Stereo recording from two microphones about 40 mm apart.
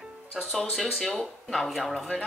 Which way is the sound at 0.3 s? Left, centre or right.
Centre.